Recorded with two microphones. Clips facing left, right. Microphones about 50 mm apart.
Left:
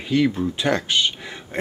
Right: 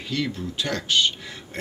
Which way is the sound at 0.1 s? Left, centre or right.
Left.